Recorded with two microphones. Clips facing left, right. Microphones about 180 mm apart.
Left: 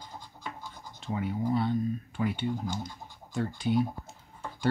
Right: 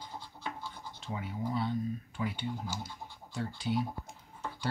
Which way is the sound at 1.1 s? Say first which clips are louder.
Left 6 dB; 60° left (ahead or behind).